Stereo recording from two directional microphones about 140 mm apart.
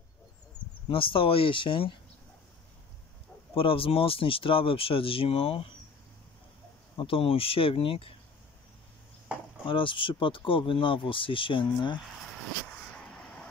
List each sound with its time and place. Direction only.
0.8 s speech: 40° left (ahead or behind)
3.5 s speech: 40° left (ahead or behind)
7.0 s speech: 40° left (ahead or behind)
9.7 s speech: 35° left (ahead or behind)
12.9 s a sound: 5° left (ahead or behind)